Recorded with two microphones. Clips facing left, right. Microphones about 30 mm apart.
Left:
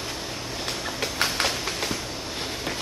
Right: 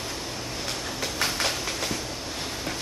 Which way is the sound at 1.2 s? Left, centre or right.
Centre.